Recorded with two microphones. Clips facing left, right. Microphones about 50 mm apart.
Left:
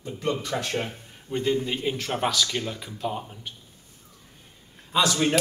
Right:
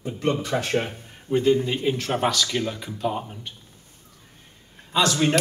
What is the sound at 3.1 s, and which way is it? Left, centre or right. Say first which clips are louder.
Speech: right 3 dB; centre.